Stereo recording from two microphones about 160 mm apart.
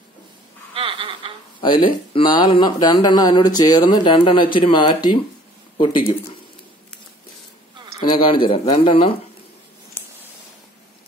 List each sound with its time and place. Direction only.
0.7 s a sound: 35° right (ahead or behind)
1.6 s speech: 30° left (ahead or behind)
8.1 s speech: 30° left (ahead or behind)